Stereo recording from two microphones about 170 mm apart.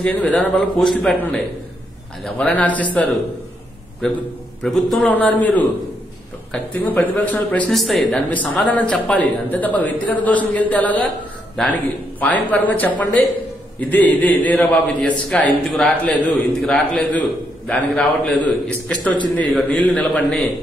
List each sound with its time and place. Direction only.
0.0 s a man's voice: 5° left (ahead or behind)
4.6 s a man's voice: centre (ahead or behind)